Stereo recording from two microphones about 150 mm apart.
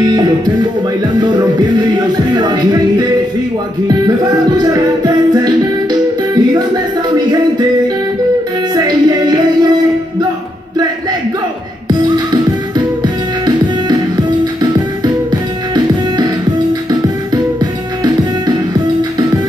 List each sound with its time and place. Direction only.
1.8 s music: 30° right (ahead or behind)
4.6 s music: 25° right (ahead or behind)
8.7 s music: 25° right (ahead or behind)
11.9 s music: 25° right (ahead or behind)
18.0 s music: 25° right (ahead or behind)